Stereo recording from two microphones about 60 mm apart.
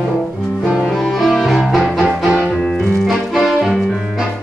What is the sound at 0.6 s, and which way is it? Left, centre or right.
Music, centre.